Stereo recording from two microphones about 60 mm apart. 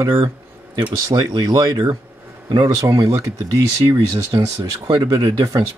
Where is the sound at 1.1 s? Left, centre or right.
Right.